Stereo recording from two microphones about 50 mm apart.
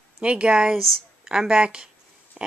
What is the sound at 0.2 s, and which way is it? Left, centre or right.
Speech, right.